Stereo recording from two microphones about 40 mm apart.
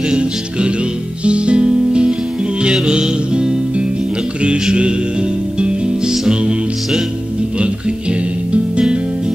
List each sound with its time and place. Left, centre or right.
0.1 s music: right
7.5 s music: right